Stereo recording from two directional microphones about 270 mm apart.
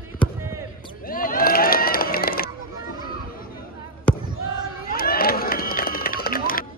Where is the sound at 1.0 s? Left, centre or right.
Left.